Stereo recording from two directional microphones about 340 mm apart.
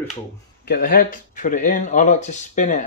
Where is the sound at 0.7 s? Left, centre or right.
Left.